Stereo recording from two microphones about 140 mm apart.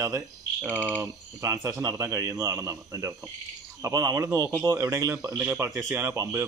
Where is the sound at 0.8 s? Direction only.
15° right (ahead or behind).